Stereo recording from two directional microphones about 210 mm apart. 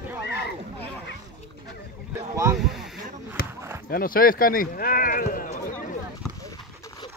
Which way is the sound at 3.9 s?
45° left (ahead or behind).